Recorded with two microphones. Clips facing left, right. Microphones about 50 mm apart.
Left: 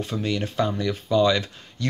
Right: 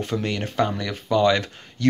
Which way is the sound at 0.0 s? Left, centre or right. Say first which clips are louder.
Right 1 dB; right.